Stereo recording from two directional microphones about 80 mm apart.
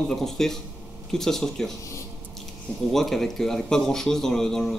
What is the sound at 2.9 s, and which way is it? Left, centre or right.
A man's voice, centre.